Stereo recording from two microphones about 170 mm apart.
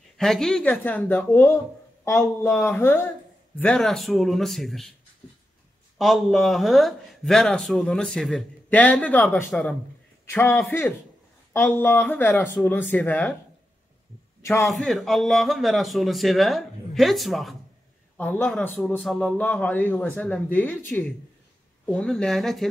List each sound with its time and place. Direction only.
0.2 s a man's voice: 5° left (ahead or behind)
5.9 s a man's voice: centre (ahead or behind)
14.4 s a man's voice: 15° left (ahead or behind)
14.7 s a man's voice: centre (ahead or behind)